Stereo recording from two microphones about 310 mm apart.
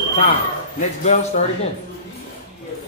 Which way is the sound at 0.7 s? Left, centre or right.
Left.